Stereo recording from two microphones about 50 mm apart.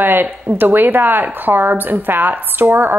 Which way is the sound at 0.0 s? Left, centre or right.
Right.